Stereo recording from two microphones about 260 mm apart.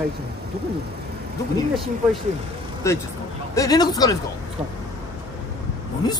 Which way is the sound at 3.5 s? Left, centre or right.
Centre.